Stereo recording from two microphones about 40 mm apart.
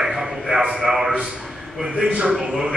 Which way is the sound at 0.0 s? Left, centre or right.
Centre.